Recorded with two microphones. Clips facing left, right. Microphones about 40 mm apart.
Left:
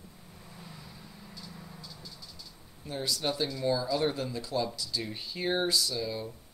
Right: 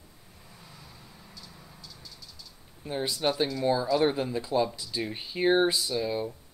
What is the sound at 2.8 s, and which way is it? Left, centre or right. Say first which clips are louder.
Speech: right 4 dB; right.